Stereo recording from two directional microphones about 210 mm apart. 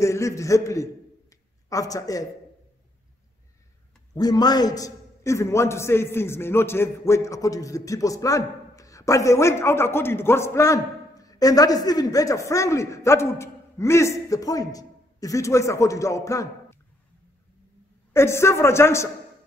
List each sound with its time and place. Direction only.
0.0 s a man's voice: 15° left (ahead or behind)
4.1 s a man's voice: 20° left (ahead or behind)
18.1 s a man's voice: 10° left (ahead or behind)